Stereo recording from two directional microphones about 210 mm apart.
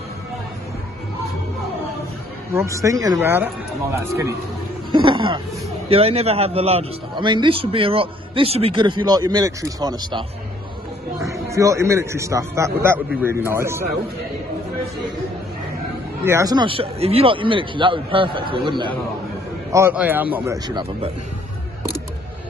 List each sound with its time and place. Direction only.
2.5 s a man's voice: 15° right (ahead or behind)
4.9 s a sound: 25° right (ahead or behind)
5.9 s a man's voice: 30° right (ahead or behind)
11.2 s a man's voice: 15° right (ahead or behind)
16.3 s a man's voice: 15° right (ahead or behind)
19.7 s a man's voice: 10° right (ahead or behind)